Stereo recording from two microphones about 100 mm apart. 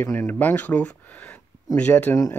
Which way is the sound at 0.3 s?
20° left (ahead or behind).